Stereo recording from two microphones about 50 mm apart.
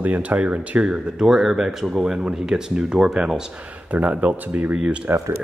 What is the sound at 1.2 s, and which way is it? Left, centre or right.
Speech, centre.